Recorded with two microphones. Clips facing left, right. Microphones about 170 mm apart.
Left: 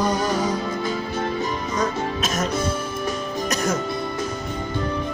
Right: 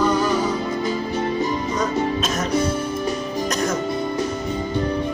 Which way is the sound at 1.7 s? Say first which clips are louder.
Right 1 dB; centre (ahead or behind).